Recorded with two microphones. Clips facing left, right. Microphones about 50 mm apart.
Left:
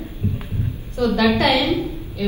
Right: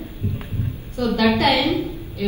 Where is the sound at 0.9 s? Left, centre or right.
Left.